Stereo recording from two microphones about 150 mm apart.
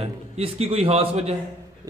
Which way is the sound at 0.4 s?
40° right (ahead or behind).